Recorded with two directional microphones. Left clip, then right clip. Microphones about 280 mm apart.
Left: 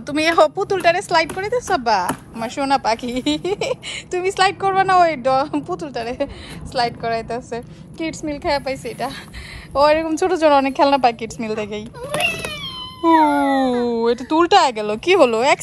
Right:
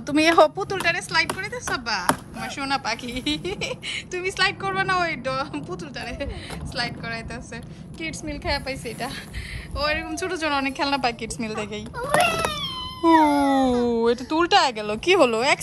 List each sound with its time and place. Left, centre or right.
0.0 s speech: centre
8.1 s a woman's voice: centre
9.8 s speech: centre
12.1 s cat: centre
13.5 s speech: centre